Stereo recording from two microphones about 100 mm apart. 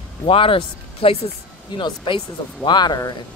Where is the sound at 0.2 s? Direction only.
65° left (ahead or behind).